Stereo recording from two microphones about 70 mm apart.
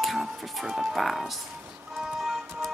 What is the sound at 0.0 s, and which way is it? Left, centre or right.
Music, centre.